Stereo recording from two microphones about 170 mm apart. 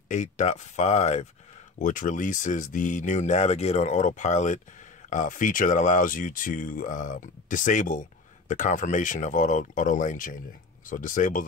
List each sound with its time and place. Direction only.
0.1 s speech: 45° left (ahead or behind)